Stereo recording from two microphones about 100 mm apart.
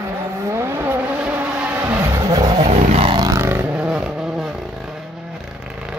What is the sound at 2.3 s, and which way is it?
Vehicle, 45° right (ahead or behind).